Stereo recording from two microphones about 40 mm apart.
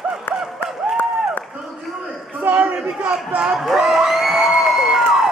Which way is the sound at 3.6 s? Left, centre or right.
Centre.